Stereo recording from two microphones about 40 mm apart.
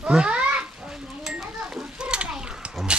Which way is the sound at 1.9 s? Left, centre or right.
Right.